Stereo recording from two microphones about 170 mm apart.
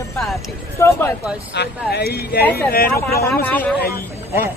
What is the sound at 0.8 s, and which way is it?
Speech, 15° left (ahead or behind).